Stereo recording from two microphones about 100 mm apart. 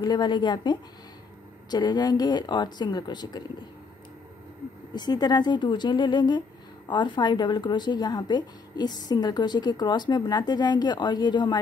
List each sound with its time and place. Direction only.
0.0 s a woman's voice: 45° left (ahead or behind)
4.9 s a woman's voice: 45° left (ahead or behind)